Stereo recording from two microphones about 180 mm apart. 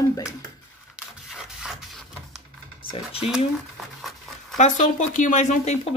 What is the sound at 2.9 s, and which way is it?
Speech, 30° left (ahead or behind).